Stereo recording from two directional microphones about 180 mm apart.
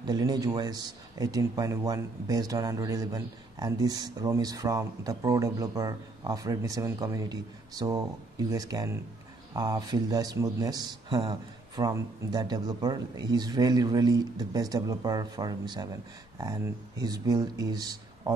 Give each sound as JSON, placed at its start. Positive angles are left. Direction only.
{"t": 0.0, "sound": "speech", "side_deg": -20}